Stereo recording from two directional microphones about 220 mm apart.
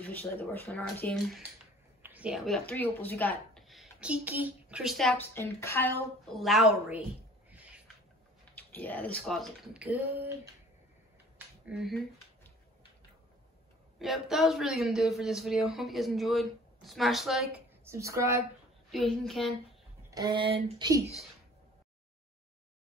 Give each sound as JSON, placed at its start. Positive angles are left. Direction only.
{"t": 0.0, "sound": "a woman's voice", "side_deg": 10}
{"t": 5.3, "sound": "a woman's voice", "side_deg": 10}
{"t": 7.5, "sound": "a sound", "side_deg": -5}
{"t": 8.5, "sound": "speech", "side_deg": 10}
{"t": 11.3, "sound": "a sound", "side_deg": -5}
{"t": 13.9, "sound": "speech", "side_deg": 0}
{"t": 17.8, "sound": "a woman's voice", "side_deg": -15}
{"t": 18.9, "sound": "speech", "side_deg": 0}
{"t": 20.1, "sound": "speech", "side_deg": -20}